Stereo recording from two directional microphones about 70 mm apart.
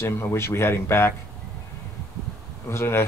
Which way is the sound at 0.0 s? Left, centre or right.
Left.